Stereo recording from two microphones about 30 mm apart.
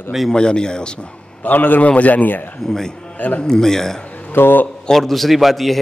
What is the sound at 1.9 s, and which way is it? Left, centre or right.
Speech, left.